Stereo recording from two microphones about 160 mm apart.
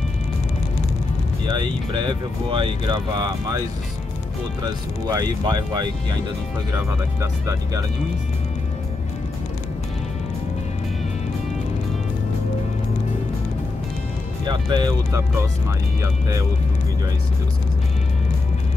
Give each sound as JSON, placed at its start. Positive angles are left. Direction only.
{"t": 1.5, "sound": "speech", "side_deg": -30}
{"t": 4.6, "sound": "speech", "side_deg": -25}
{"t": 14.4, "sound": "speech", "side_deg": -30}